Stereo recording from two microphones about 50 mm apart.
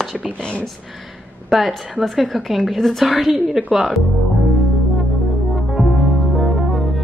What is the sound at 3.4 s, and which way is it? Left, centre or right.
Speech, right.